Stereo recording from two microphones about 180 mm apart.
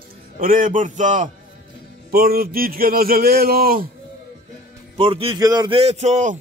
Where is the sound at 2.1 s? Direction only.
55° right (ahead or behind).